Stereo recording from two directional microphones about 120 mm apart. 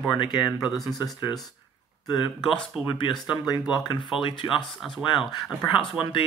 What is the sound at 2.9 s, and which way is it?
Speech, 40° left (ahead or behind).